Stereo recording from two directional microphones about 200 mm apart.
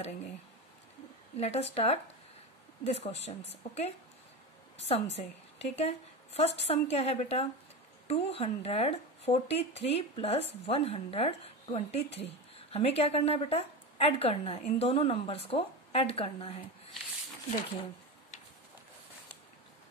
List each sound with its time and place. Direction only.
1.4 s a woman's voice: 30° left (ahead or behind)